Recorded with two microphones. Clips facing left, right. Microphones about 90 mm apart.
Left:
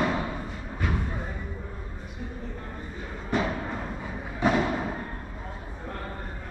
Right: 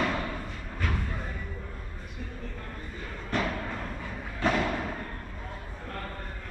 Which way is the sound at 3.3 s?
15° left (ahead or behind).